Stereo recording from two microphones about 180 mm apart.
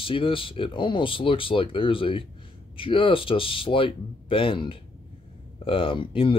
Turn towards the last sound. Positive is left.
turn(degrees=30)  # may be behind; listen again after turning